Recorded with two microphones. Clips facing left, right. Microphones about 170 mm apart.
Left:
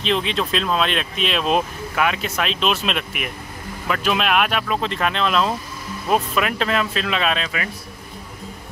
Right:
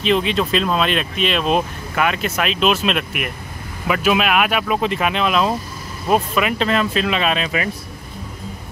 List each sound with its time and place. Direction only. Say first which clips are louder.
0.0 s speech: right 4 dB; 5° right (ahead or behind)
7.4 s speech: right 5 dB; 25° right (ahead or behind)